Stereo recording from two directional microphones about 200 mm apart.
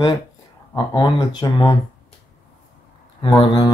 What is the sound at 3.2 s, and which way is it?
Speech, 20° left (ahead or behind).